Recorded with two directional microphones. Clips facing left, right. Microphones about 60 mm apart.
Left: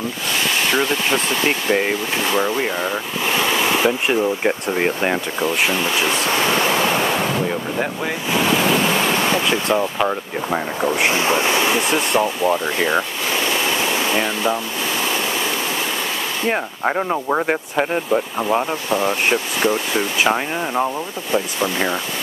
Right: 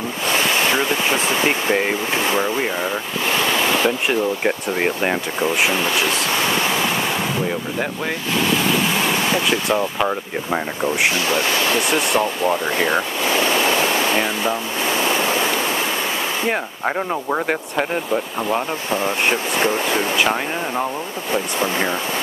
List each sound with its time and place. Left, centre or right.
0.7 s speech: centre
1.8 s speech: centre
8.9 s speech: centre
11.1 s speech: left
11.8 s speech: centre
14.1 s speech: centre
16.4 s speech: centre